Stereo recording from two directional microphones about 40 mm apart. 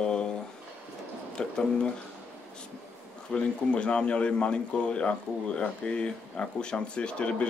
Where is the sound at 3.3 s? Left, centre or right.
Left.